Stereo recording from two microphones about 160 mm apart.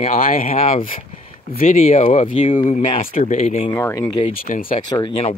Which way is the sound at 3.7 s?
20° left (ahead or behind).